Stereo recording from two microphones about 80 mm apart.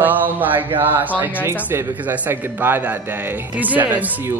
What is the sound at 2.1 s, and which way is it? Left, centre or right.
Speech, right.